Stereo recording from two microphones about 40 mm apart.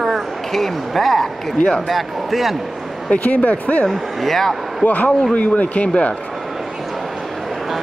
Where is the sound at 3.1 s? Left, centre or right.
Left.